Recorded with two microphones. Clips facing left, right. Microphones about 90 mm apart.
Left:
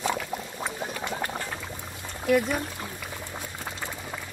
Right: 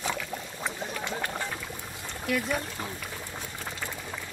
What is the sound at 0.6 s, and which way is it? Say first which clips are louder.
Boiling: right 1 dB; 10° left (ahead or behind).